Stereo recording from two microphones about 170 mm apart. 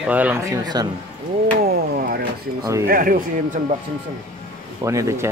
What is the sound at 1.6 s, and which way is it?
Speech, 65° right (ahead or behind).